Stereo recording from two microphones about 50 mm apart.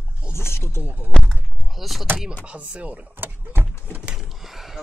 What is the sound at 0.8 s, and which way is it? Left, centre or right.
Speech, right.